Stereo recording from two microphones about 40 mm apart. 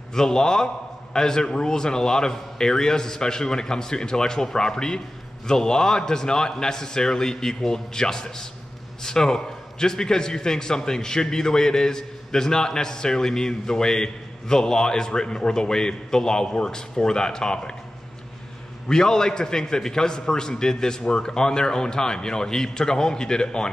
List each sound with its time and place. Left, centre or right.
0.1 s a man's voice: centre
18.9 s a man's voice: centre